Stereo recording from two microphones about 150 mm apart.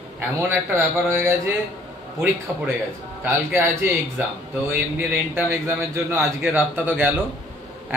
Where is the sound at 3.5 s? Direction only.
15° right (ahead or behind).